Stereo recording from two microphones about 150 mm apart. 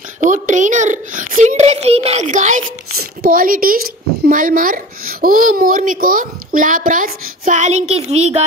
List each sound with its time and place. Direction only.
0.2 s a child's voice: 55° right (ahead or behind)
3.0 s a woman's voice: 75° right (ahead or behind); by 8.5 s 45° right (ahead or behind)